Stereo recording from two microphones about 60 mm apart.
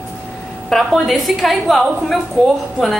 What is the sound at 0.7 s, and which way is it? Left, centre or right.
A woman's voice, centre.